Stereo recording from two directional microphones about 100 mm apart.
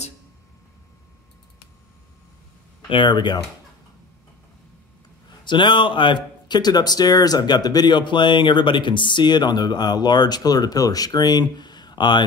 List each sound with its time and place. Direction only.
2.9 s speech: 55° left (ahead or behind)
5.4 s speech: 50° left (ahead or behind)